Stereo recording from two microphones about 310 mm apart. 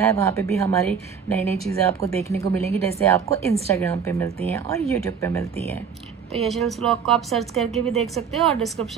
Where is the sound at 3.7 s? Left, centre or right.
Centre.